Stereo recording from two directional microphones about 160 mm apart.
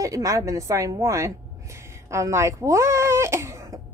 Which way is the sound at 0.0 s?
20° right (ahead or behind).